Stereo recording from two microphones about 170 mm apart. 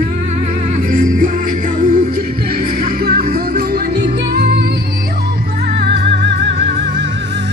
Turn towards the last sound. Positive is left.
turn(degrees=-90)